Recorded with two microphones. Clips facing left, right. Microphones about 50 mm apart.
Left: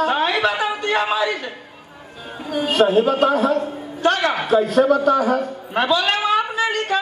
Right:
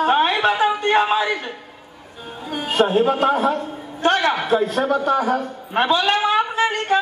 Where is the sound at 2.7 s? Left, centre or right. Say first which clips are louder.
Left 1 dB; right.